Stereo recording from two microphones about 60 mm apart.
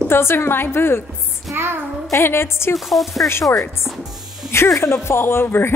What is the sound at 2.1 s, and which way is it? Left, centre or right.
Speech, left.